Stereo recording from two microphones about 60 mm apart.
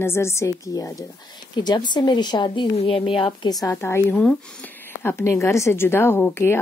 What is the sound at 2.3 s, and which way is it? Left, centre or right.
Speech, left.